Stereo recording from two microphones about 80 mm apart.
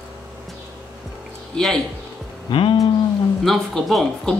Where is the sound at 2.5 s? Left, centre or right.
Left.